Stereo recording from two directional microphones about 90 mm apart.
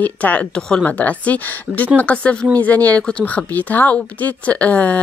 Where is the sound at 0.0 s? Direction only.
20° left (ahead or behind).